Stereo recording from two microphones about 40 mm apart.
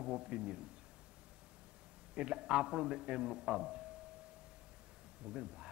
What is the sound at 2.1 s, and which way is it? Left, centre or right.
A man's voice, right.